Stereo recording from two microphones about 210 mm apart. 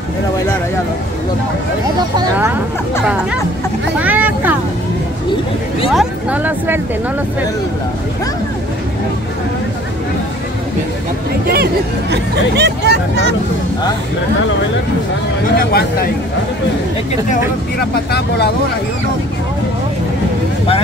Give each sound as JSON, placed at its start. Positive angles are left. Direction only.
{"t": 2.3, "sound": "speech", "side_deg": -10}
{"t": 3.9, "sound": "vehicle", "side_deg": -5}
{"t": 5.9, "sound": "speech", "side_deg": -10}
{"t": 11.4, "sound": "speech", "side_deg": -50}
{"t": 15.5, "sound": "speech", "side_deg": 45}